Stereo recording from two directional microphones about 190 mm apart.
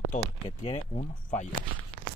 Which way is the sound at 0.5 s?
30° left (ahead or behind).